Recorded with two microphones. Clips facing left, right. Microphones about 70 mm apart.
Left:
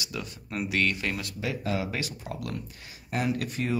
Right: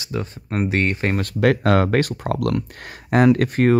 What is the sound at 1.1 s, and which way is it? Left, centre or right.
Speech, right.